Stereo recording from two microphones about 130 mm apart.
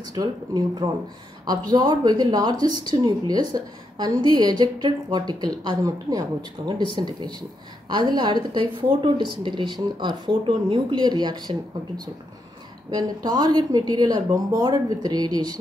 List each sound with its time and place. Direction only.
0.1 s a woman's voice: 30° right (ahead or behind)
12.9 s a woman's voice: 30° right (ahead or behind)